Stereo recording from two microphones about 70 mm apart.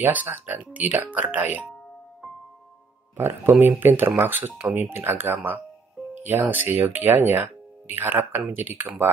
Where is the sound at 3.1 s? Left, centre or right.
Right.